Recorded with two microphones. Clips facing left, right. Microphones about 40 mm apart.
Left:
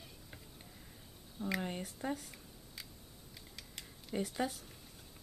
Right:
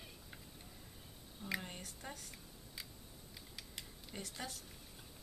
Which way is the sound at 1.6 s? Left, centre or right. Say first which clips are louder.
Left 9 dB; centre.